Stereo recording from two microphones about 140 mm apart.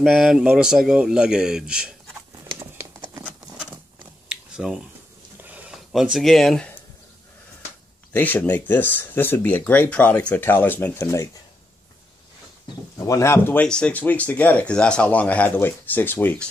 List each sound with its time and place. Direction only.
0.0 s speech: centre (ahead or behind)
2.6 s a sound: 20° right (ahead or behind)
4.3 s a sound: 5° right (ahead or behind)
5.9 s speech: centre (ahead or behind)
8.1 s speech: 10° left (ahead or behind)
13.0 s speech: 20° left (ahead or behind)